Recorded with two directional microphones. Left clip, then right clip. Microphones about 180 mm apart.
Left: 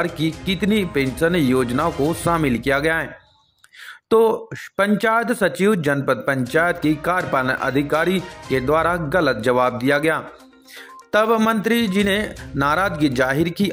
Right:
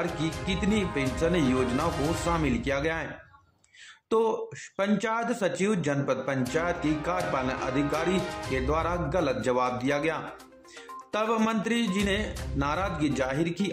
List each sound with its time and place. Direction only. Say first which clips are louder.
0.0 s speech: left 8 dB; 35° left (ahead or behind)
4.1 s speech: left 10 dB; 30° left (ahead or behind)